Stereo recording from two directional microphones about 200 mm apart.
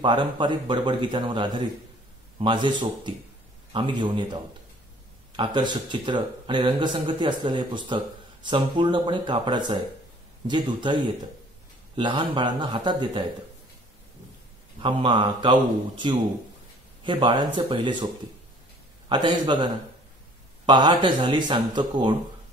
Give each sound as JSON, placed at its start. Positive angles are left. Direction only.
{"t": 0.0, "sound": "speech", "side_deg": -25}
{"t": 14.8, "sound": "speech", "side_deg": -25}
{"t": 17.0, "sound": "speech", "side_deg": -25}
{"t": 19.0, "sound": "speech", "side_deg": -20}